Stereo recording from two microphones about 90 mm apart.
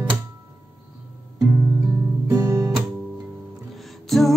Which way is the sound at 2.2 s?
35° right (ahead or behind).